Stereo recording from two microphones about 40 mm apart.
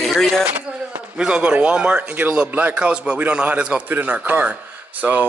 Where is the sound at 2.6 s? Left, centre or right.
Right.